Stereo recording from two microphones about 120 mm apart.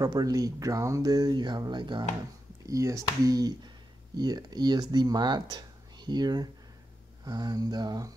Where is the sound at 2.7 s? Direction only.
25° right (ahead or behind).